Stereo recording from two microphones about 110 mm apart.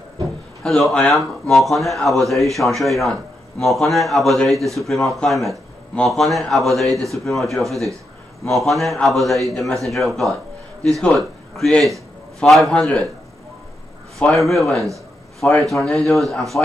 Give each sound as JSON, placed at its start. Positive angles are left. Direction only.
{"t": 0.7, "sound": "a man's voice", "side_deg": 5}
{"t": 7.6, "sound": "speech", "side_deg": -30}
{"t": 8.5, "sound": "a man's voice", "side_deg": 0}
{"t": 14.2, "sound": "a man's voice", "side_deg": 0}